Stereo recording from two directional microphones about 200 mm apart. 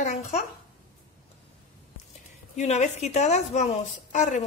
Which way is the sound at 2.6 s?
35° left (ahead or behind).